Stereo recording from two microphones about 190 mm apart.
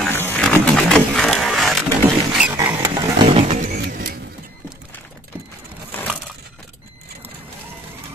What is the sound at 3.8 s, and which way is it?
Vehicle, 55° right (ahead or behind).